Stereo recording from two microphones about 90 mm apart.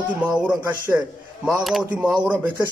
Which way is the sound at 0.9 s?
5° right (ahead or behind).